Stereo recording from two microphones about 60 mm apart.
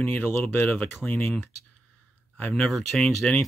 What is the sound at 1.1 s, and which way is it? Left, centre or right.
Speech, left.